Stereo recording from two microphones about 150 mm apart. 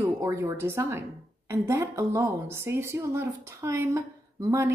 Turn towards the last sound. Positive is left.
turn(degrees=-20)  # may be behind; listen again after turning